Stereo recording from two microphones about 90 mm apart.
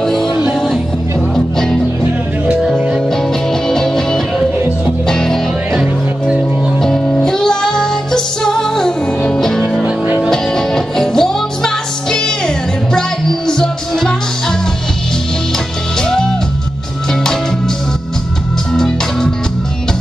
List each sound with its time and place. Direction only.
0.0 s music: 5° left (ahead or behind)
3.6 s music: 5° left (ahead or behind)
16.0 s music: 5° left (ahead or behind)
18.7 s music: 5° left (ahead or behind)